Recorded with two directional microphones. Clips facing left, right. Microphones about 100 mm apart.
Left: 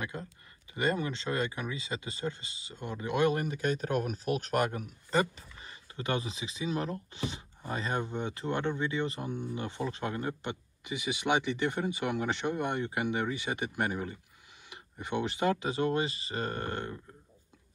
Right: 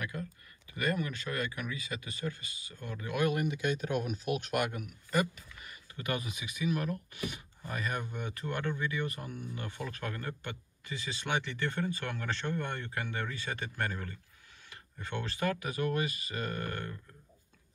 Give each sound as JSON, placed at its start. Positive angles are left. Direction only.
{"t": 0.0, "sound": "speech", "side_deg": 25}